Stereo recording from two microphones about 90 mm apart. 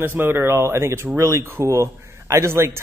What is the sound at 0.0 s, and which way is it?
Speech, 25° right (ahead or behind).